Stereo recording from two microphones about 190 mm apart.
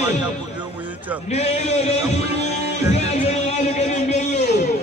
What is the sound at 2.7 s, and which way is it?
Music, 35° left (ahead or behind).